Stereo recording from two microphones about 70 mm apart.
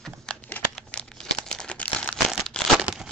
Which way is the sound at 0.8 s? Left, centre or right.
Centre.